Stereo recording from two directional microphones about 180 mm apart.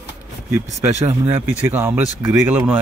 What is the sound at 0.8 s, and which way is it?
Speech, 15° right (ahead or behind).